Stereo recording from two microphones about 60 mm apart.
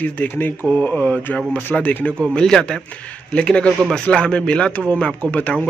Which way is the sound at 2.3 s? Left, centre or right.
Centre.